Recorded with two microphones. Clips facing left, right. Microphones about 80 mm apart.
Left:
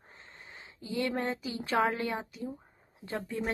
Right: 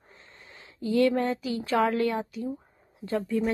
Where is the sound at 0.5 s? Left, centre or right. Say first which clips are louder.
Right 10 dB; left.